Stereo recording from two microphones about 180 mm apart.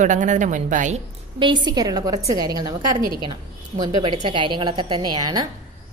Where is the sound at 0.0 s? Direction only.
45° right (ahead or behind).